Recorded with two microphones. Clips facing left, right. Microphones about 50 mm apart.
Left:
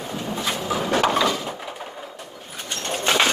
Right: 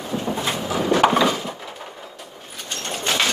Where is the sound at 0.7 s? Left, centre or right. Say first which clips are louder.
Right 2 dB; centre.